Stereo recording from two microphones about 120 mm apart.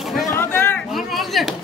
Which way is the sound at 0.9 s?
Centre (ahead or behind).